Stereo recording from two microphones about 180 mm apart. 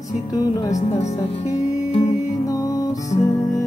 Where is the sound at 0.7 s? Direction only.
40° left (ahead or behind).